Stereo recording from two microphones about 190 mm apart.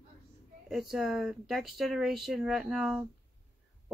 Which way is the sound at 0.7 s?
Centre (ahead or behind).